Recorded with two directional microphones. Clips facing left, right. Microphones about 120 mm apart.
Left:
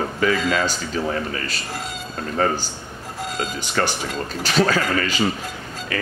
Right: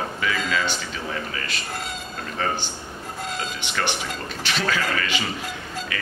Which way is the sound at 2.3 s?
40° left (ahead or behind).